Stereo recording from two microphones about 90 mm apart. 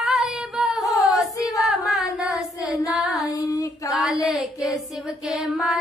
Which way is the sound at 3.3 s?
40° left (ahead or behind).